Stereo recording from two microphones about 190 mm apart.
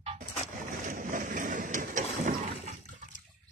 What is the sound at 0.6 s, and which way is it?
Boat, 45° right (ahead or behind).